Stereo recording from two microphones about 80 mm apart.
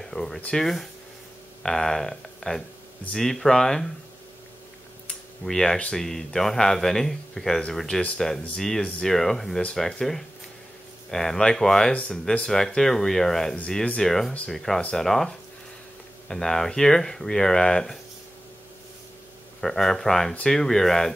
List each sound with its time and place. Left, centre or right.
0.0 s a sound: centre
0.4 s speech: centre
5.4 s speech: centre
19.6 s speech: centre